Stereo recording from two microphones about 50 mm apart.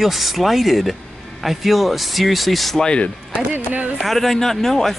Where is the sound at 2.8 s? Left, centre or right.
Left.